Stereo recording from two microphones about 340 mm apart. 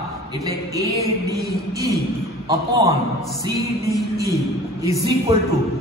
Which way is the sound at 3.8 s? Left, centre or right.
Centre.